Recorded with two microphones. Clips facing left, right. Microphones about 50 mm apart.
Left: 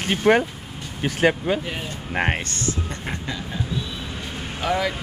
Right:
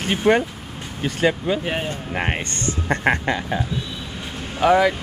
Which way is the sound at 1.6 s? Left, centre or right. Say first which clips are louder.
Right 6 dB; right.